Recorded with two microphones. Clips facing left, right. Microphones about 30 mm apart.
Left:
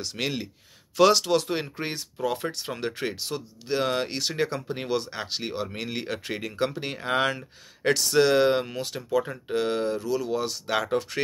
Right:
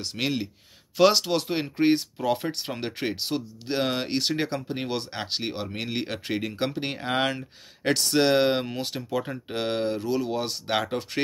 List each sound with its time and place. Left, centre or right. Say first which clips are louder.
0.0 s speech: right 2 dB; centre
2.2 s speech: right 2 dB; right
2.7 s speech: even; right
7.2 s speech: left 1 dB; centre
8.2 s speech: left 1 dB; right